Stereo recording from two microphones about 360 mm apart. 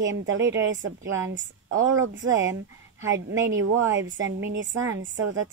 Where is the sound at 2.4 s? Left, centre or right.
Centre.